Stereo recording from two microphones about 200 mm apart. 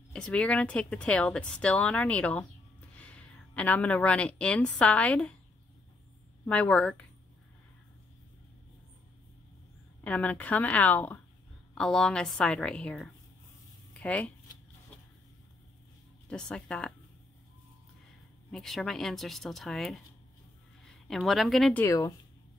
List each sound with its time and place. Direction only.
0.1 s a woman's voice: 5° left (ahead or behind)
6.4 s speech: 5° left (ahead or behind)
10.0 s speech: 5° left (ahead or behind)
16.3 s speech: 5° left (ahead or behind)
18.5 s a woman's voice: centre (ahead or behind)
21.8 s speech: 15° left (ahead or behind)